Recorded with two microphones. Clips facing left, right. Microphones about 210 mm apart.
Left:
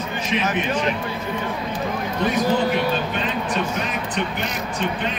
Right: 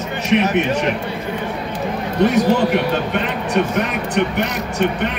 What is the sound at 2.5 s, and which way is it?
A man's voice, 65° right (ahead or behind).